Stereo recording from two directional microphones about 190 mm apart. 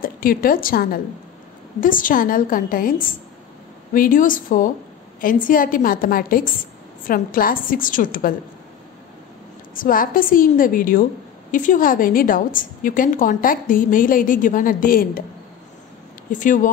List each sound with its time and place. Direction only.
0.0 s a woman's voice: 50° left (ahead or behind)
9.8 s a woman's voice: 45° left (ahead or behind)
16.3 s a woman's voice: 45° left (ahead or behind)